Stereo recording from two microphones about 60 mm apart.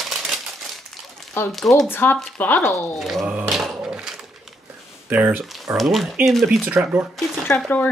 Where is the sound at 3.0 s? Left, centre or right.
Centre.